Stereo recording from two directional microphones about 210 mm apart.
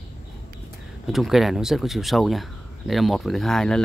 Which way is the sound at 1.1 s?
Centre (ahead or behind).